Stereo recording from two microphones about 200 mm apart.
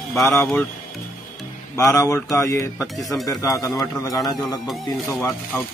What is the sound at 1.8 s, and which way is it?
A man's voice, 15° left (ahead or behind).